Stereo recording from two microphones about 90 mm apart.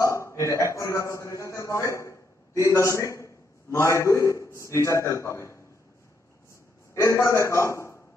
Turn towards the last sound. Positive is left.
turn(degrees=30)  # may be behind; listen again after turning